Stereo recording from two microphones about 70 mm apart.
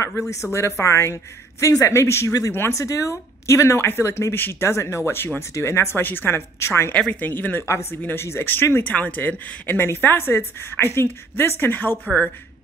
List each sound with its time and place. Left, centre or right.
0.3 s speech: left
6.9 s speech: left
7.6 s speech: left